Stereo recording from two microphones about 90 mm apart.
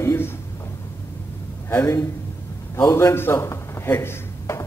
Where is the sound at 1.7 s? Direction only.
30° left (ahead or behind).